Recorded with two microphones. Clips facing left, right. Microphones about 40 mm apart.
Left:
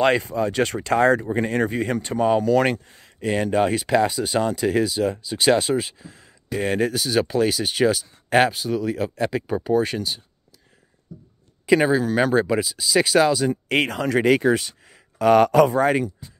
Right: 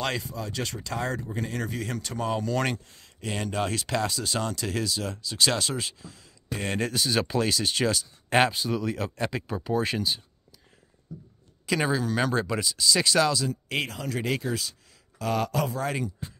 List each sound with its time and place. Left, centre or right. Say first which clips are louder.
0.0 s speech: left 11 dB; left
1.7 s speech: left 9 dB; left
6.5 s speech: left 7 dB; centre
11.8 s speech: left 7 dB; centre
13.7 s speech: left 9 dB; left